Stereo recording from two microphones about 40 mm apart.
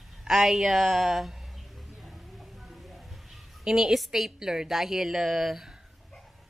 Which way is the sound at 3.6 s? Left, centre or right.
Centre.